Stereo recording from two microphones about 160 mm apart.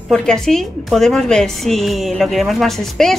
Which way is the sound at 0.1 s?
5° left (ahead or behind).